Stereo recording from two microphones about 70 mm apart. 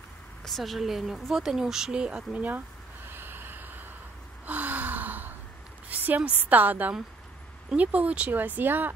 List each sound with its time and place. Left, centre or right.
0.5 s speech: centre; by 2.6 s right
3.1 s snort: right
4.5 s gasp: right
5.9 s a woman's voice: right